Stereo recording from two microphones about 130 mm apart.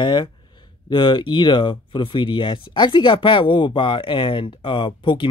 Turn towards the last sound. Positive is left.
turn(degrees=40)  # may be behind; listen again after turning